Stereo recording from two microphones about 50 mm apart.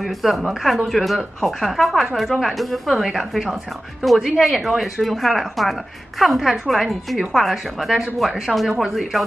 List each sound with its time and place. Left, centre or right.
0.0 s speech: centre